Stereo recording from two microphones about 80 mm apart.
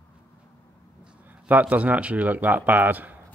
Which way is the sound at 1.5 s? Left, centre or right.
Centre.